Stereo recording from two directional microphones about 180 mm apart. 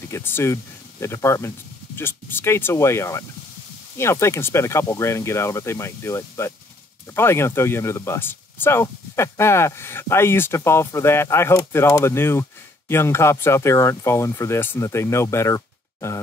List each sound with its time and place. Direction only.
0.1 s speech: 15° left (ahead or behind)